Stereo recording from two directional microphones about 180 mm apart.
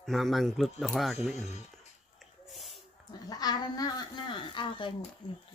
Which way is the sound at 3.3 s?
20° left (ahead or behind).